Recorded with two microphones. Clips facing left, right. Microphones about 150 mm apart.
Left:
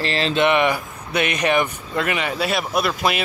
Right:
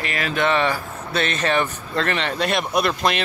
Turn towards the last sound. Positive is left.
turn(degrees=5)  # may be behind; listen again after turning